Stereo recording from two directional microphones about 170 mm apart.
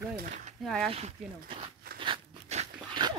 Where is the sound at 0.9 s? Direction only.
30° right (ahead or behind).